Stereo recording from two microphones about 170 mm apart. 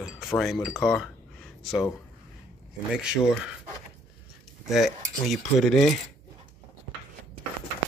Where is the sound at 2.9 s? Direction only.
5° right (ahead or behind).